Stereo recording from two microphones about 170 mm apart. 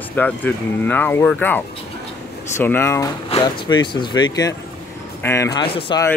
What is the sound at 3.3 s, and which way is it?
Speech, 25° left (ahead or behind).